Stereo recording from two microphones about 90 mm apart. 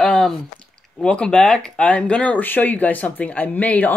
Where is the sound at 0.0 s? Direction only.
5° left (ahead or behind).